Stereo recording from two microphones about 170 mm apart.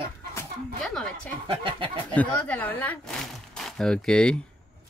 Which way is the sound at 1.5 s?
30° right (ahead or behind).